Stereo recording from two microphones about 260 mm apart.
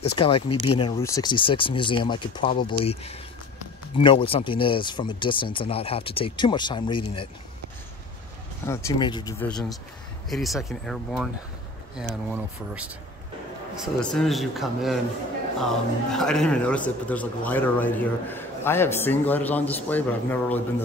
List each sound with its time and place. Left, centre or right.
0.2 s speech: left
8.6 s a man's voice: centre
9.5 s a man's voice: centre
12.3 s a man's voice: centre